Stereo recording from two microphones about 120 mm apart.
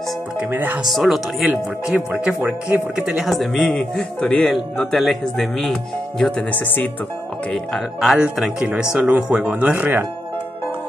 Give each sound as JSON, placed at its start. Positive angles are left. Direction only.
{"t": 0.4, "sound": "speech", "side_deg": -15}
{"t": 0.8, "sound": "speech", "side_deg": 0}
{"t": 7.5, "sound": "speech", "side_deg": 0}